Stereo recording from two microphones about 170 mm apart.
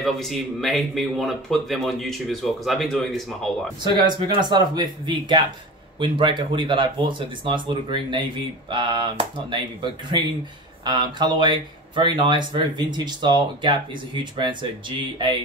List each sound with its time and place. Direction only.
0.0 s speech: centre (ahead or behind)
3.8 s speech: 25° right (ahead or behind)